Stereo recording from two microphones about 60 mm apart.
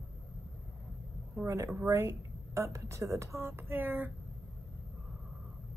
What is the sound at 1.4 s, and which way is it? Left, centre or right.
A woman's voice, right.